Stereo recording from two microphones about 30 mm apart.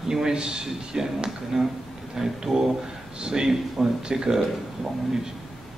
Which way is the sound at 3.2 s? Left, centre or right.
Right.